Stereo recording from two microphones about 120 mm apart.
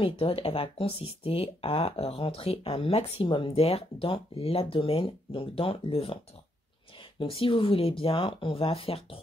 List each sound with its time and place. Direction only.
0.0 s speech: 50° left (ahead or behind)
7.2 s speech: 50° left (ahead or behind)